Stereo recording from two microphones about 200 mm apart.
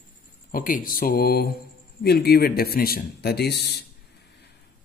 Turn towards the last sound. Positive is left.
turn(degrees=55)  # may be behind; listen again after turning